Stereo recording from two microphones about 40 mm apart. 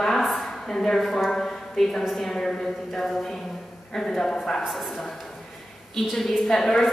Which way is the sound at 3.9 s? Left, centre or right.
Centre.